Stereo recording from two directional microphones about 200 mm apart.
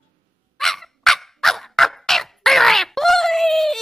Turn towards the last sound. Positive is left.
turn(degrees=0)  # may be behind; listen again after turning